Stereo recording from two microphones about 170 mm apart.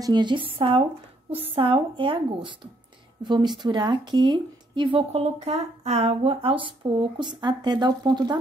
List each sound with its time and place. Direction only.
0.0 s speech: 25° right (ahead or behind)